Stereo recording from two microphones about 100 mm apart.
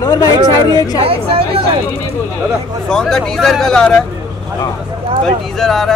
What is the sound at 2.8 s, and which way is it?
Speech, 5° left (ahead or behind).